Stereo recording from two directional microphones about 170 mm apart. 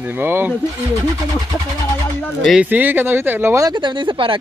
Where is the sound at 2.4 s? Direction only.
5° right (ahead or behind).